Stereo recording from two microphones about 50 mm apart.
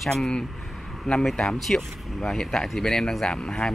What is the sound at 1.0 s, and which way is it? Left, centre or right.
Speech, centre.